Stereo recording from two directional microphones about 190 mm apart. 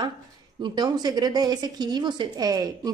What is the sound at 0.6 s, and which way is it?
Speech, 25° right (ahead or behind).